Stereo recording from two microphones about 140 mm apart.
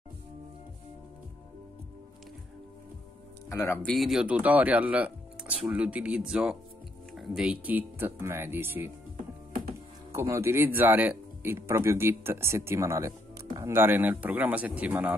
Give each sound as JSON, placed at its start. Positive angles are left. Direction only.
{"t": 3.4, "sound": "speech", "side_deg": 15}
{"t": 3.9, "sound": "speech", "side_deg": 0}
{"t": 10.1, "sound": "speech", "side_deg": -20}